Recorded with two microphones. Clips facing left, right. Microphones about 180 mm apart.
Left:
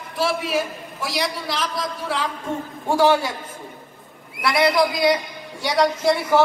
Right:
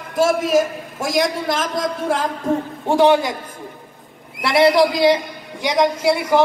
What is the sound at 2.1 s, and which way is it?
Speech, 45° right (ahead or behind).